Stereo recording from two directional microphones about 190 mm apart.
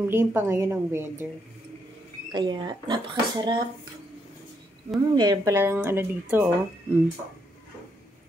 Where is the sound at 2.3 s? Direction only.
25° right (ahead or behind).